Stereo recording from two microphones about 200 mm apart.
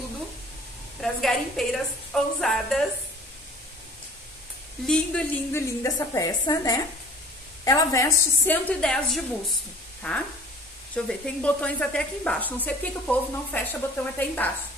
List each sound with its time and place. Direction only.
1.0 s a woman's voice: centre (ahead or behind)
4.8 s a woman's voice: 5° left (ahead or behind)